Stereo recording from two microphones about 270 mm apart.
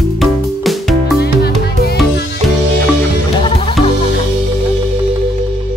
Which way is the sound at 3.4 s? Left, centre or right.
Centre.